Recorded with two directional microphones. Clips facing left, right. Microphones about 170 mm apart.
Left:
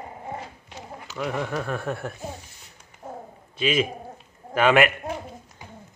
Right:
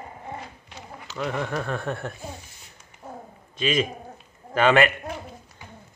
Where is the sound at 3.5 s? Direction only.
10° left (ahead or behind).